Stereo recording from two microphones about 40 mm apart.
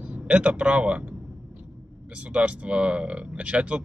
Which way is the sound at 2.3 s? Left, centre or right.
Right.